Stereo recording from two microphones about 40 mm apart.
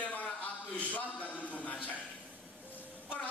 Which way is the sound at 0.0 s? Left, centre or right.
Left.